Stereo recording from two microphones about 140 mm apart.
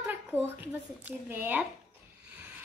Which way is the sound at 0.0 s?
15° right (ahead or behind).